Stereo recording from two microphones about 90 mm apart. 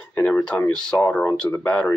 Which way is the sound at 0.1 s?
20° left (ahead or behind).